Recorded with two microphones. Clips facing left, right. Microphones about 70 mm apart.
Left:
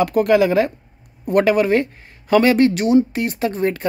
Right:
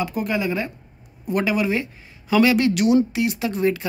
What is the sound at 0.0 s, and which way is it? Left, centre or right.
Speech, left.